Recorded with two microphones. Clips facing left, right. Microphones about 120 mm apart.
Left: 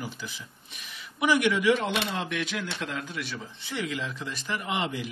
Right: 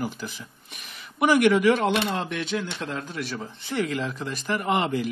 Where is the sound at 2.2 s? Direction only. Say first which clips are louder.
Right 3 dB; 30° right (ahead or behind).